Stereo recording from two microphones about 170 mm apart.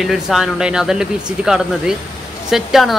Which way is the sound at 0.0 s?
Centre (ahead or behind).